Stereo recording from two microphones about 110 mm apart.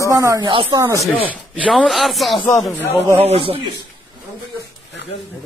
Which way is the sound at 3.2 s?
60° right (ahead or behind).